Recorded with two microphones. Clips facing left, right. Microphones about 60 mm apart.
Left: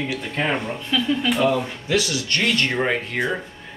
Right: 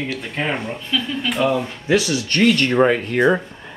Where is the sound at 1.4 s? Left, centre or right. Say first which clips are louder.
Right 4 dB; centre.